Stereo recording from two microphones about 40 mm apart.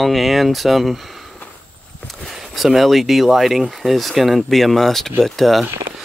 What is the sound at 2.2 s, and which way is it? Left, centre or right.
Speech, centre.